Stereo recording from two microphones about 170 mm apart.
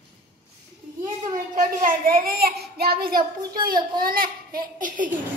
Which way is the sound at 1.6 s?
50° right (ahead or behind).